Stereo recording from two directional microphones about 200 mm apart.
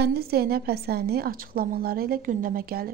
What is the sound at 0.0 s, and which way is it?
A woman's voice, 50° right (ahead or behind).